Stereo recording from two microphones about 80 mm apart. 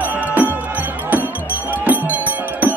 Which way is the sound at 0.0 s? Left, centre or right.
Centre.